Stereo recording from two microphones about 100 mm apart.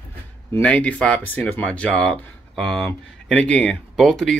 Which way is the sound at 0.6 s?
10° left (ahead or behind).